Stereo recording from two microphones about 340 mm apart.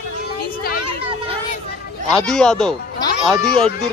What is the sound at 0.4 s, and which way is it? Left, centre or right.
Children playing, left.